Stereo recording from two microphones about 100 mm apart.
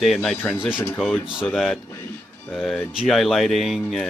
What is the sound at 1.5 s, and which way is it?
Speech, centre (ahead or behind).